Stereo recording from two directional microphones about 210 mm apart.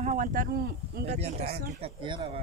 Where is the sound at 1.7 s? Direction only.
25° right (ahead or behind).